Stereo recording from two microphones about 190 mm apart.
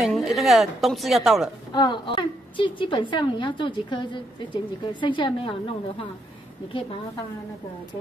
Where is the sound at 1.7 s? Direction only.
25° left (ahead or behind).